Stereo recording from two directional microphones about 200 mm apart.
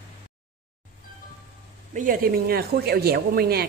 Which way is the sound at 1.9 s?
45° right (ahead or behind).